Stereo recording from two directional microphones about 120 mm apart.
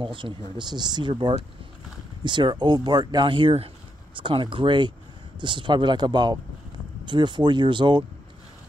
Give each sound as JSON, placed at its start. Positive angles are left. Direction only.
{"t": 0.0, "sound": "speech", "side_deg": -45}